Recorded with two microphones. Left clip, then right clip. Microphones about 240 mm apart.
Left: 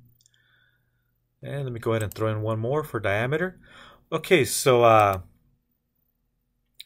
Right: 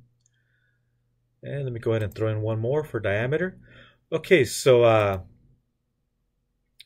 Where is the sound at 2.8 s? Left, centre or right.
Centre.